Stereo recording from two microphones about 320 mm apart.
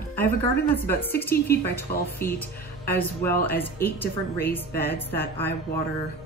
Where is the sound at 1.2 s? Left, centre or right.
Centre.